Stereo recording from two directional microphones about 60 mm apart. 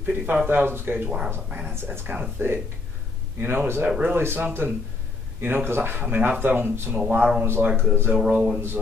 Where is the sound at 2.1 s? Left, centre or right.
Right.